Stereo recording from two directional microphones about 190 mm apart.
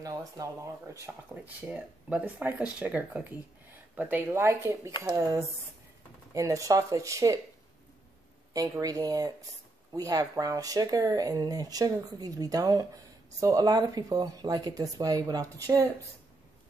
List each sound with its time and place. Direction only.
0.4 s speech: 20° right (ahead or behind)
8.5 s speech: 20° right (ahead or behind)